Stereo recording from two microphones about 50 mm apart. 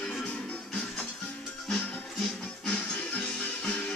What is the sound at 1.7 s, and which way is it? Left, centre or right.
Music, centre.